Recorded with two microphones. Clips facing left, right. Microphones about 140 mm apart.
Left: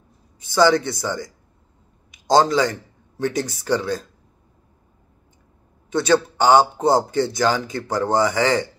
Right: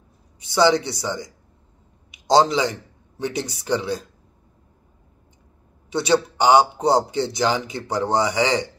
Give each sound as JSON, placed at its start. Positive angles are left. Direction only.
{"t": 0.6, "sound": "speech", "side_deg": -20}
{"t": 2.3, "sound": "a man's voice", "side_deg": -20}
{"t": 5.9, "sound": "a man's voice", "side_deg": -20}